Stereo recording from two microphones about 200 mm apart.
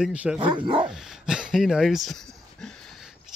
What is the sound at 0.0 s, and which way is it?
Speech, 5° right (ahead or behind).